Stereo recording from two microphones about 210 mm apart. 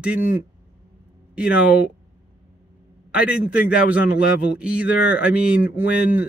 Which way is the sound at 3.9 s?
5° right (ahead or behind).